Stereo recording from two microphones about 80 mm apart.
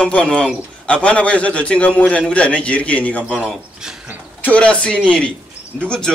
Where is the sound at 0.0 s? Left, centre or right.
Centre.